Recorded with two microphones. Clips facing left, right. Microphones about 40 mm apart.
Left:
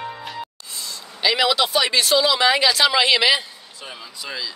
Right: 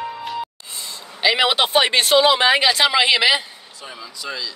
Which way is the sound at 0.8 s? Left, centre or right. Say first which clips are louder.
Right 2 dB; right.